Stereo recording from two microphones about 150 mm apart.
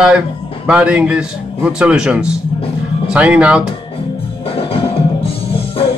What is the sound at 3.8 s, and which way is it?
Music, 40° left (ahead or behind).